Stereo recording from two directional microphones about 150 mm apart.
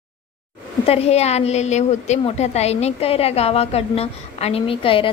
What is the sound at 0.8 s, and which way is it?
A woman's voice, 45° left (ahead or behind).